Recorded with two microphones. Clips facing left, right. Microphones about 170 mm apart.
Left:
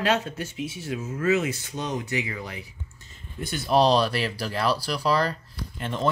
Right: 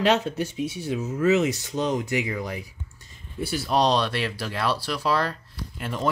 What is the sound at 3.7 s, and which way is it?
Speech, 5° left (ahead or behind).